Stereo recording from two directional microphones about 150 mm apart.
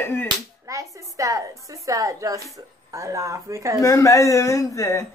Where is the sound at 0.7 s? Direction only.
20° right (ahead or behind).